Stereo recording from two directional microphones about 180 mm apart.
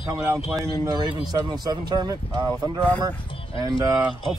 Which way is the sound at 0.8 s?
20° right (ahead or behind).